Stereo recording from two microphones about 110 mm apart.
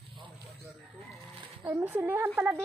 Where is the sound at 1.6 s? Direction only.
20° right (ahead or behind).